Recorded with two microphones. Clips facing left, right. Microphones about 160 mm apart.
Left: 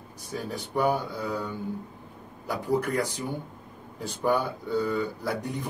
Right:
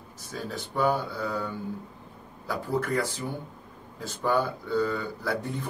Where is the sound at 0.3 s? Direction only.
15° left (ahead or behind).